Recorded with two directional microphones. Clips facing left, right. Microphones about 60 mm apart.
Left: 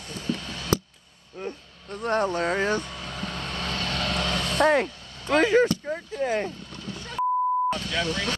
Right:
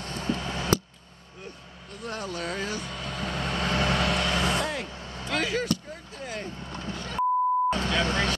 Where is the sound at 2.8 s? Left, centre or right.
Centre.